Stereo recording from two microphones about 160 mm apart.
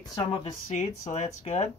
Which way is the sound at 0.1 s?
25° left (ahead or behind).